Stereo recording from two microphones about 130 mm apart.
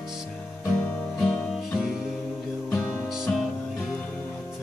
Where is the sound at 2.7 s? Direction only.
20° left (ahead or behind).